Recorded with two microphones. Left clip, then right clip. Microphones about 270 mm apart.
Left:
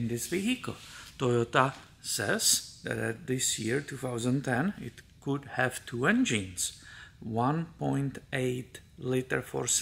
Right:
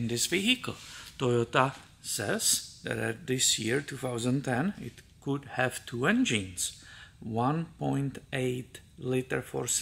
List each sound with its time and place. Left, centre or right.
0.0 s speech: centre